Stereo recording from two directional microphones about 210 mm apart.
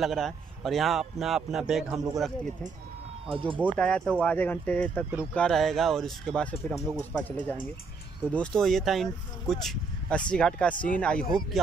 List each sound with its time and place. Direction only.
0.0 s speech: centre (ahead or behind)
3.3 s speech: 25° right (ahead or behind)
3.7 s speech: 5° left (ahead or behind)